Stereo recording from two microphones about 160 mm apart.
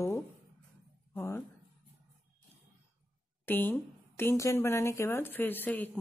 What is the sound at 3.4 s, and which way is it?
A woman's voice, 10° left (ahead or behind).